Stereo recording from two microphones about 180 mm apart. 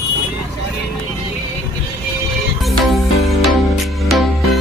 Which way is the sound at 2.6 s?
Centre (ahead or behind).